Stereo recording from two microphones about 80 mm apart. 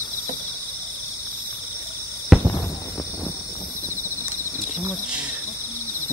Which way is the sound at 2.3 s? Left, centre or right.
Centre.